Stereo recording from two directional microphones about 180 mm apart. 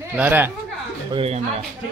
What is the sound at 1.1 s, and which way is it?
Speech, 35° right (ahead or behind).